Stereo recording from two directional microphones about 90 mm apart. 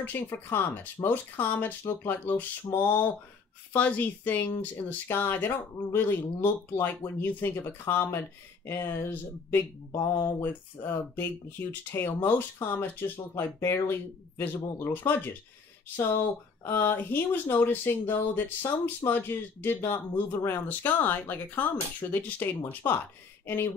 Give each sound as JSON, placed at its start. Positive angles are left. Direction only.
{"t": 0.0, "sound": "speech", "side_deg": 25}
{"t": 9.9, "sound": "mantra", "side_deg": 40}
{"t": 10.4, "sound": "speech", "side_deg": 25}
{"t": 16.6, "sound": "speech", "side_deg": 25}